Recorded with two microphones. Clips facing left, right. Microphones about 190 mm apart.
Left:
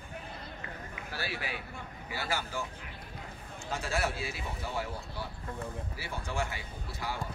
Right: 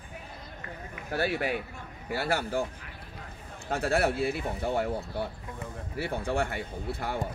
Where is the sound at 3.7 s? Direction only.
60° right (ahead or behind).